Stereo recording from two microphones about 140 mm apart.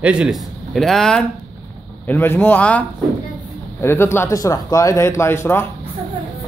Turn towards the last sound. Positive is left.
turn(degrees=15)  # may be behind; listen again after turning